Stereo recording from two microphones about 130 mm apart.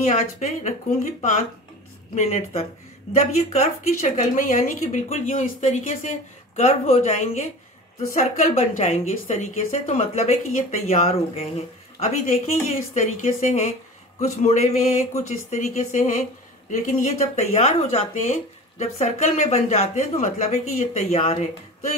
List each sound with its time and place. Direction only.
0.1 s speech: 70° left (ahead or behind)
2.2 s speech: 50° left (ahead or behind)
8.1 s speech: 85° left; by 12.1 s 55° left (ahead or behind)
12.3 s speech: 65° left (ahead or behind)
16.7 s speech: 85° left; by 21.9 s 55° left (ahead or behind)